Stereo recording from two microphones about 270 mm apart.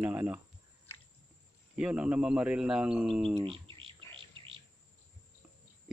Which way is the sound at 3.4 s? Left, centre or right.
Centre.